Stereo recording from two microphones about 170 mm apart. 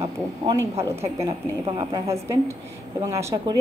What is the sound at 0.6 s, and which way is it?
A woman's voice, 15° right (ahead or behind).